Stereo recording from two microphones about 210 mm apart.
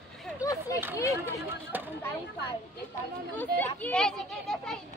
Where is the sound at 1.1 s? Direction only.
10° right (ahead or behind).